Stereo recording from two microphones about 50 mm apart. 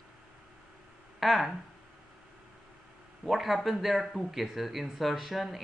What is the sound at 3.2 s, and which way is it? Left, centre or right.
Speech, centre.